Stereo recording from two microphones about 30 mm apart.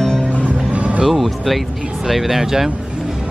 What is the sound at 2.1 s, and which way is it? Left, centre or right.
Speech, centre.